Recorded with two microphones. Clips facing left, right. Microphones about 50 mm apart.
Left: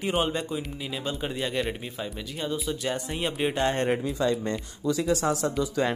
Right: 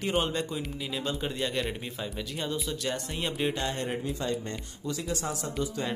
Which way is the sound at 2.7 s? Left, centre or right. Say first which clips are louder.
Left 3 dB; centre.